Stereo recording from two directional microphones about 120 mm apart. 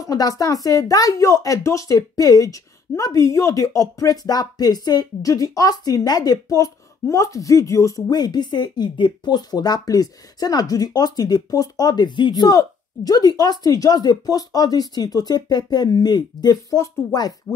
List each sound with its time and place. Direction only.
0.0 s a woman's voice: 30° left (ahead or behind)